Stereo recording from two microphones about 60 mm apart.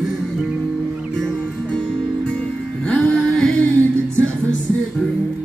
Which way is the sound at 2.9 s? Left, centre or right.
Centre.